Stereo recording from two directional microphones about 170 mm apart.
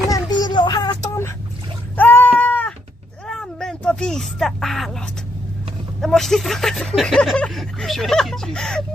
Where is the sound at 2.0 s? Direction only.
10° left (ahead or behind).